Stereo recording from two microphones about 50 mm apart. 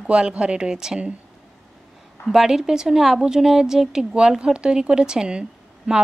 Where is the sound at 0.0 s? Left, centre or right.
Centre.